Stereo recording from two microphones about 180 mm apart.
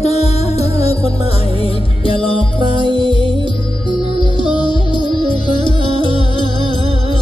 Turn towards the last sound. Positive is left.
turn(degrees=25)  # may be behind; listen again after turning